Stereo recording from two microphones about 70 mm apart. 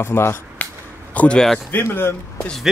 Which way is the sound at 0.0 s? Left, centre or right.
Left.